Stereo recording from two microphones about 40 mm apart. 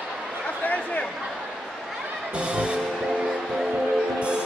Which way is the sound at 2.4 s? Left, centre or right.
Right.